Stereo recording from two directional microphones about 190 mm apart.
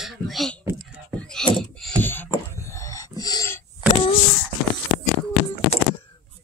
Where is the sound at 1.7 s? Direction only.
5° left (ahead or behind).